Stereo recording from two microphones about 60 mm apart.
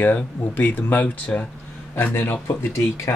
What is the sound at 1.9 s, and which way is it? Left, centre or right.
Speech, left.